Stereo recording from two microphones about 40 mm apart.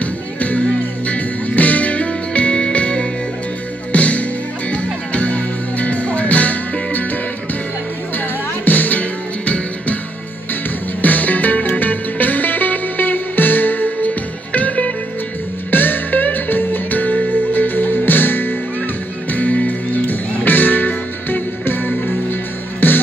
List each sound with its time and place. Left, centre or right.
0.0 s music: left
8.6 s music: left
11.0 s music: left
15.7 s music: left
19.3 s music: left
20.4 s music: left